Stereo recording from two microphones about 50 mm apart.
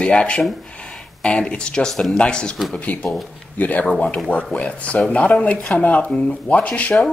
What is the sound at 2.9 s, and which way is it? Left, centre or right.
Speech, left.